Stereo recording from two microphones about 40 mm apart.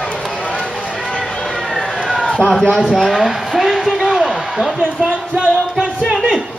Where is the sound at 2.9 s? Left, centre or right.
Centre.